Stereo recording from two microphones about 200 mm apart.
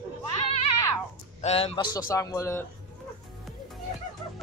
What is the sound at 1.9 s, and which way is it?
Speech, 15° left (ahead or behind).